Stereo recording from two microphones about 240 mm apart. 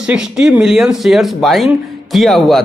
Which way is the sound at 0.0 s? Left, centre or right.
Centre.